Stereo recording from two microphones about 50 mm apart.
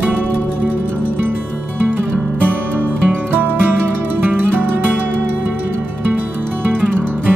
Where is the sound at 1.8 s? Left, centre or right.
Right.